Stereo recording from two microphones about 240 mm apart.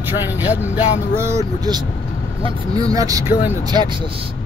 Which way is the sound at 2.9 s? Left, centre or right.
Centre.